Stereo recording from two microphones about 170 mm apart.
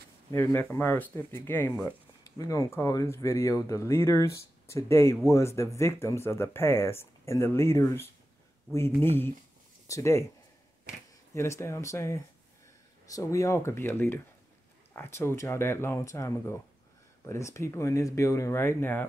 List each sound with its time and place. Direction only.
0.3 s speech: 15° left (ahead or behind)
11.3 s speech: 15° left (ahead or behind)